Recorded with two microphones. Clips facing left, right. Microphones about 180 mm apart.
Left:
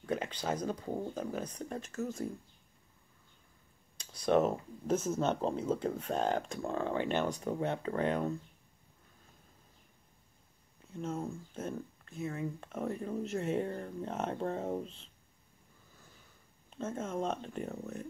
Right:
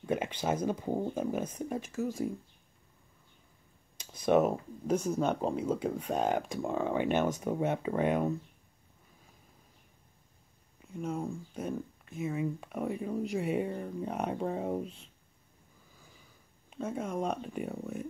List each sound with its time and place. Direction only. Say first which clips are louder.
0.0 s a sound: right 3 dB; 15° right (ahead or behind)
0.7 s speech: right 5 dB; 20° right (ahead or behind)
4.0 s clicking: right 3 dB; 20° right (ahead or behind)
5.2 s speech: right 2 dB; 10° right (ahead or behind)
10.8 s speech: right 2 dB; 10° right (ahead or behind)
16.7 s speech: right 2 dB; 10° right (ahead or behind)